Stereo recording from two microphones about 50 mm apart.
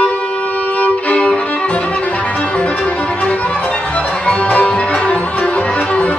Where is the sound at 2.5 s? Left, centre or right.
Left.